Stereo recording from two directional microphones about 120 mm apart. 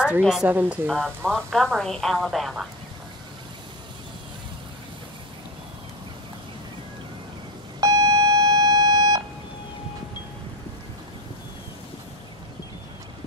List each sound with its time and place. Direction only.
0.2 s a woman's voice: centre (ahead or behind)
0.5 s speech: 15° right (ahead or behind)
0.8 s a woman's voice: 5° left (ahead or behind)
7.8 s alarm clock: 30° right (ahead or behind)